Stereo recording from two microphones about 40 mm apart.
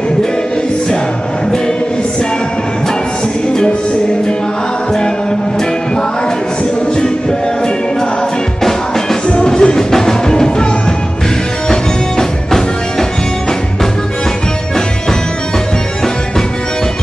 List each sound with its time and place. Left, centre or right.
7.0 s music: left
9.5 s music: centre
11.7 s music: centre